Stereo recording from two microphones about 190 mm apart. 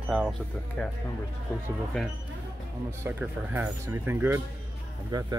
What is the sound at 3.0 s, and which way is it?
Speech, 10° right (ahead or behind).